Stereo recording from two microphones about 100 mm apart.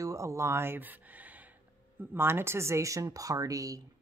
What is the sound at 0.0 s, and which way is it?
Speech, 30° right (ahead or behind).